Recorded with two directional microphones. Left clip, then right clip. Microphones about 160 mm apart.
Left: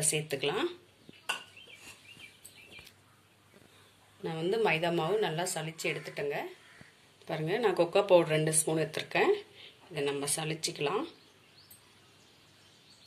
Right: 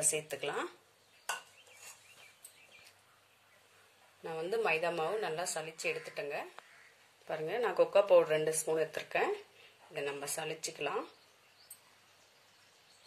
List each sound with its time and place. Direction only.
0.1 s speech: 55° right (ahead or behind)
4.2 s speech: 50° right (ahead or behind)